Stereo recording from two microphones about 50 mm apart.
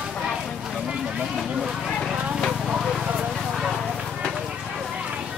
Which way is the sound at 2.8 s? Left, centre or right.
Centre.